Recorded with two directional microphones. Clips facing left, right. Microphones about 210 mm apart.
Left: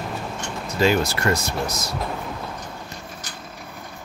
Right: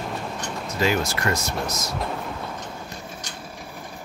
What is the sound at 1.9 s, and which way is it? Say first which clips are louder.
Vehicle: even; centre (ahead or behind).